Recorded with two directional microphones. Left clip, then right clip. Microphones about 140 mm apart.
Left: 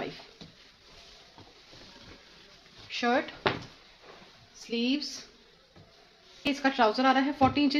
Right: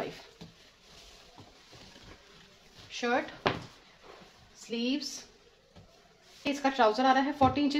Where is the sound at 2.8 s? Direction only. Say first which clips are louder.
Left 3 dB; 35° left (ahead or behind).